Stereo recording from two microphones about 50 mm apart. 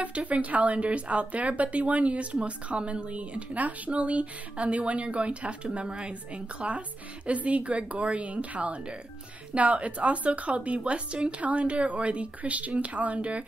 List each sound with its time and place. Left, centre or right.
0.0 s speech: right